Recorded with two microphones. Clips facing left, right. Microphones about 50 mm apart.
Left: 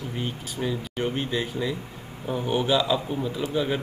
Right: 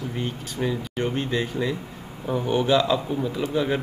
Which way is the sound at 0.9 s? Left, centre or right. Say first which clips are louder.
Right 2 dB; centre.